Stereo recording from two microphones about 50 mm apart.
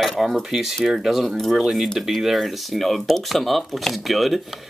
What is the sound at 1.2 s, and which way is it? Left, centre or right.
Speech, centre.